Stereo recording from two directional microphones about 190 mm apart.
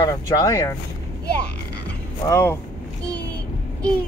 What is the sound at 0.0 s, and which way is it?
Speech, 20° left (ahead or behind).